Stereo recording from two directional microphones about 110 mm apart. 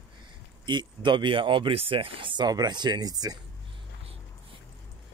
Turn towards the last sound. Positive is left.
turn(degrees=-35)  # may be behind; listen again after turning